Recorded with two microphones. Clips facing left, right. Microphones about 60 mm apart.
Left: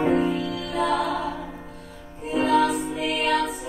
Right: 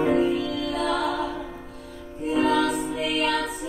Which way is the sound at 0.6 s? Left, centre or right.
Left.